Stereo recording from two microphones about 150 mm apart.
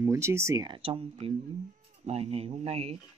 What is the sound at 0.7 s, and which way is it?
Speech, 40° right (ahead or behind).